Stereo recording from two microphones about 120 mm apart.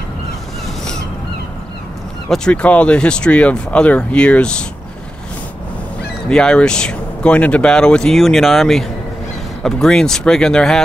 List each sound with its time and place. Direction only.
2.2 s speech: 5° left (ahead or behind)
6.2 s speech: 5° left (ahead or behind)